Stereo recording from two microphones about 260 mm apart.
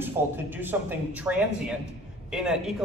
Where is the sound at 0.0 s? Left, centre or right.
Centre.